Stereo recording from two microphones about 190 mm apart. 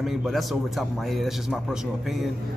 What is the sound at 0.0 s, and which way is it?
Speech, centre (ahead or behind).